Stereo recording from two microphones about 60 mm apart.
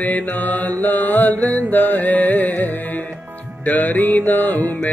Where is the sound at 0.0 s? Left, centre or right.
Left.